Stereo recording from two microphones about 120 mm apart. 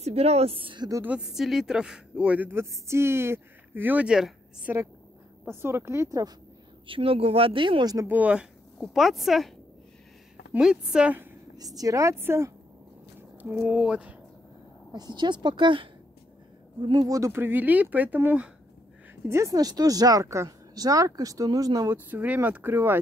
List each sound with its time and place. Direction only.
0.0 s a woman's voice: 60° right (ahead or behind)
1.0 s speech: 5° right (ahead or behind)
5.5 s speech: 20° right (ahead or behind)
6.9 s speech: 50° right (ahead or behind); by 8.1 s 30° right (ahead or behind)
8.1 s a woman's voice: 10° right (ahead or behind)
10.5 s speech: 5° right (ahead or behind)
11.5 s speech: 30° right (ahead or behind); by 14.1 s 10° right (ahead or behind)
14.9 s a woman's voice: 35° right (ahead or behind)
16.8 s speech: 30° right (ahead or behind); by 18.5 s 15° right (ahead or behind)
19.2 s speech: 25° right (ahead or behind)
21.9 s speech: 15° right (ahead or behind)